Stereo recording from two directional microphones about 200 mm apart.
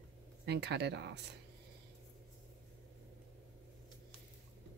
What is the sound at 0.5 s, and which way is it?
Speech, 60° right (ahead or behind).